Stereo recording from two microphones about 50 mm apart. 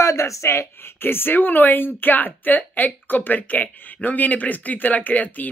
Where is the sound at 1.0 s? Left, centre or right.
Left.